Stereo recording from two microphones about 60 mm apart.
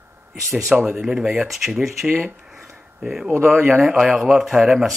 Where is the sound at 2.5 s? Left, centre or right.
Centre.